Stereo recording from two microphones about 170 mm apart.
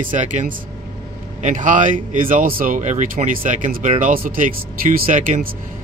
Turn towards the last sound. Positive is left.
turn(degrees=-50)  # may be behind; listen again after turning